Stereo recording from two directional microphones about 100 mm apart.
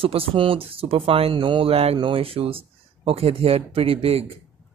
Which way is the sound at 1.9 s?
65° right (ahead or behind).